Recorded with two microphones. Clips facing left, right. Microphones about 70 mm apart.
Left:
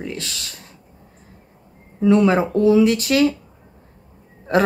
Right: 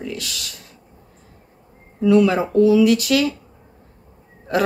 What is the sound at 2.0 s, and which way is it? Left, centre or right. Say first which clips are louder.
Speech: even; left.